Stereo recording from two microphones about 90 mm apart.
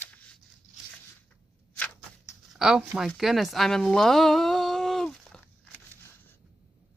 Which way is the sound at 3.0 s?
Centre (ahead or behind).